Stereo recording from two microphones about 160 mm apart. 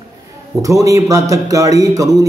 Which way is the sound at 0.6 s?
20° right (ahead or behind).